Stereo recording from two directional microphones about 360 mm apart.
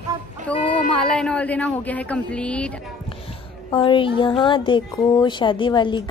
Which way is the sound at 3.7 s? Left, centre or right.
Centre.